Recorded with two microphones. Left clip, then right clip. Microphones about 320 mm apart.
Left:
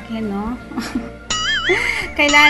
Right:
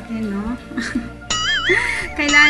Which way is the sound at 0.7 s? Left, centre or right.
Centre.